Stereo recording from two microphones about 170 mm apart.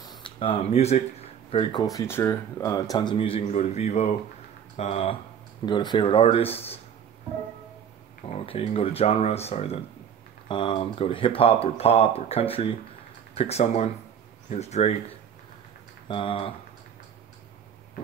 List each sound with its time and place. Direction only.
0.0 s speech: 25° left (ahead or behind)
5.7 s speech: 25° left (ahead or behind)
8.3 s speech: 35° left (ahead or behind)